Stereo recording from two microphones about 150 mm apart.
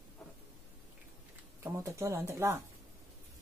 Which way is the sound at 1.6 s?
20° right (ahead or behind).